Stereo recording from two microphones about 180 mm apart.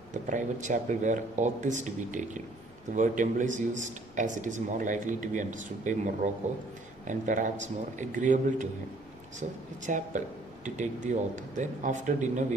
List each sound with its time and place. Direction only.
0.1 s speech: 45° right (ahead or behind)